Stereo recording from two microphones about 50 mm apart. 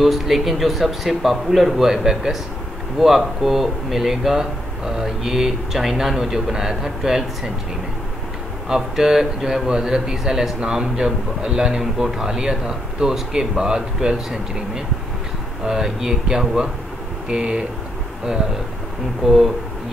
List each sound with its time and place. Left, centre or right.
0.0 s a man's voice: centre
8.6 s a man's voice: centre
17.3 s speech: centre
19.2 s a man's voice: centre